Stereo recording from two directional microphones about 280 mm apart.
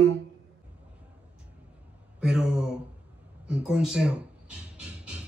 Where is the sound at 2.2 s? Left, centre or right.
Centre.